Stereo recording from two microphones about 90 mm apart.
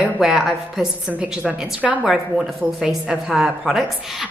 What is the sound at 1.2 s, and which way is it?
A woman's voice, 15° right (ahead or behind).